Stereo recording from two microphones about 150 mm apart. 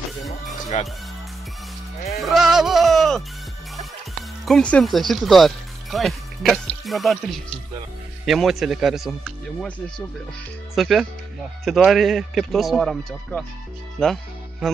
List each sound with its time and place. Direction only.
0.7 s speech: 50° left (ahead or behind)
2.1 s music: centre (ahead or behind)
4.5 s a man's voice: 5° left (ahead or behind)